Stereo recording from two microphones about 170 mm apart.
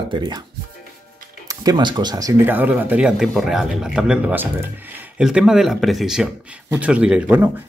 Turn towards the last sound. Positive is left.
turn(degrees=-5)  # may be behind; listen again after turning